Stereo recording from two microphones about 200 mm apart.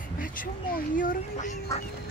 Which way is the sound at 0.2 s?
45° left (ahead or behind).